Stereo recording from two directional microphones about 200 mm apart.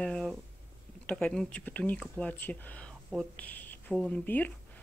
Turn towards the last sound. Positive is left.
turn(degrees=10)  # may be behind; listen again after turning